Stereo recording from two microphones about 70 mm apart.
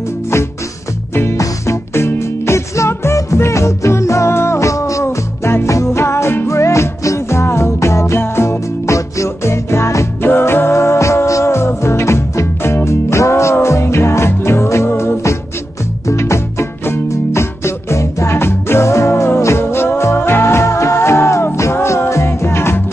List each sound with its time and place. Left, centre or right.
1.3 s music: left
5.0 s music: left